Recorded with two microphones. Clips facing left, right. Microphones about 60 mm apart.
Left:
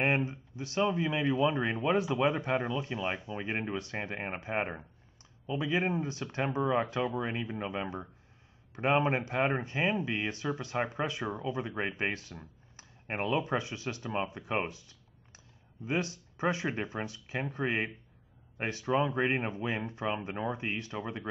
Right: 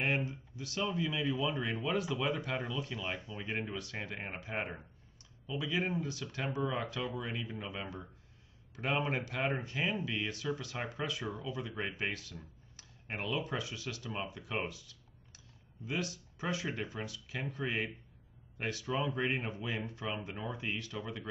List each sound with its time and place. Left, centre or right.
0.0 s speech: left